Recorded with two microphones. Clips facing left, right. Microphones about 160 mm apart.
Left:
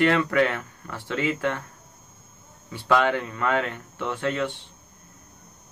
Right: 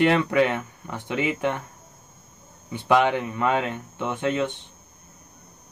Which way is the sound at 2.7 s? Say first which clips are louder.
Right 2 dB; 20° right (ahead or behind).